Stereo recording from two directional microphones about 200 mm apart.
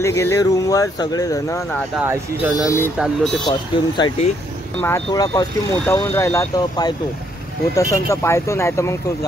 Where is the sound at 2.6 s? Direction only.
15° left (ahead or behind).